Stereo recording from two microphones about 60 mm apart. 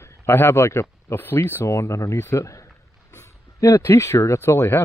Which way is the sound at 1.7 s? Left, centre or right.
Left.